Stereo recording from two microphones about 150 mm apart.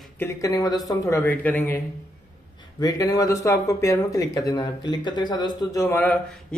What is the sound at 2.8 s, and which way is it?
Speech, 25° left (ahead or behind).